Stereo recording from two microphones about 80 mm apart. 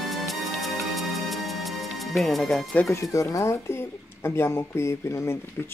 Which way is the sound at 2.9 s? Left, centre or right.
Left.